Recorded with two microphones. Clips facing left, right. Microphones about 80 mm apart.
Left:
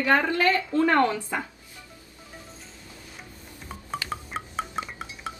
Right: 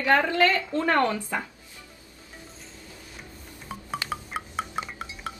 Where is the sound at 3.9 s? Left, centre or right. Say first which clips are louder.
Even; centre.